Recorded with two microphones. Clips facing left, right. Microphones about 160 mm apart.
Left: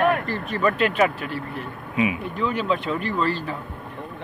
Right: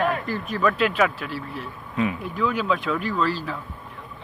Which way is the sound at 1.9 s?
10° left (ahead or behind).